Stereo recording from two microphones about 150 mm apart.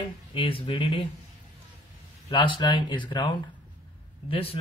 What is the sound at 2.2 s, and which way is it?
Speech, 30° left (ahead or behind).